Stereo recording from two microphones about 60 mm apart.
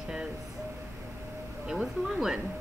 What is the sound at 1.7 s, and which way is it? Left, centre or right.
Speech, centre.